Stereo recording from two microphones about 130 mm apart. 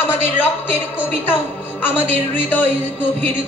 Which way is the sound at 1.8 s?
15° left (ahead or behind).